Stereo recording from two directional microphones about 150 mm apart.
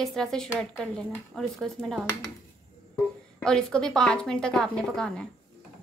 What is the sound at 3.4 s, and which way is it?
A woman's voice, 5° left (ahead or behind).